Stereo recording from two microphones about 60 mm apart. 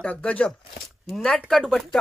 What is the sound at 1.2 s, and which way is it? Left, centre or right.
Speech, centre.